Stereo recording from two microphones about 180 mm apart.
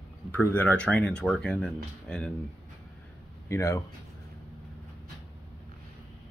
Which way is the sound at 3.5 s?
15° left (ahead or behind).